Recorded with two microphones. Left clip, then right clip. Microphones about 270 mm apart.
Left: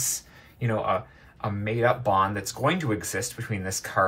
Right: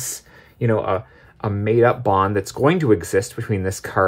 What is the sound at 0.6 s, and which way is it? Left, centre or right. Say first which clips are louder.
Speech: right 6 dB; right.